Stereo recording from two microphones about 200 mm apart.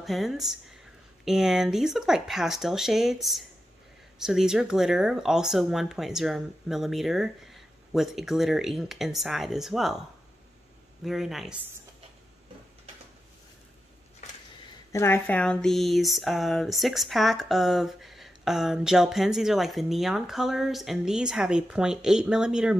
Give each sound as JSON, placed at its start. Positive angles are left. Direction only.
{"t": 0.0, "sound": "speech", "side_deg": 0}
{"t": 11.1, "sound": "speech", "side_deg": 0}
{"t": 14.9, "sound": "speech", "side_deg": 10}